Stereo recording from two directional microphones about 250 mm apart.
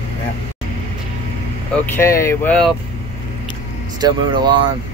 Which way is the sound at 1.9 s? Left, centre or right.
Centre.